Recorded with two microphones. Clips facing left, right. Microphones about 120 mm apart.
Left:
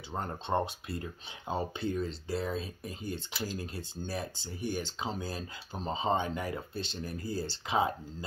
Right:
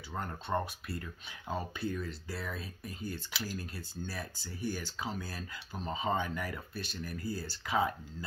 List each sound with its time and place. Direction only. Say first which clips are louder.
0.1 s speech: left 3 dB; 30° left (ahead or behind)